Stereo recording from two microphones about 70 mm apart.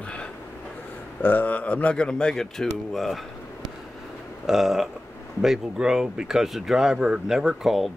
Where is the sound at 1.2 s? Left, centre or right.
Left; by 3.2 s centre.